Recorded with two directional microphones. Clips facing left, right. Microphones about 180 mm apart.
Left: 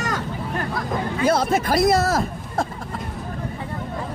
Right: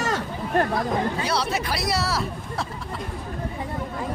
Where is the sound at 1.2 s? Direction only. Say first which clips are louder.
Left 6 dB; 50° left (ahead or behind).